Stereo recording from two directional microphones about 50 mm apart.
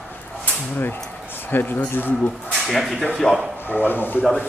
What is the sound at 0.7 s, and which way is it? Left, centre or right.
Speech, left.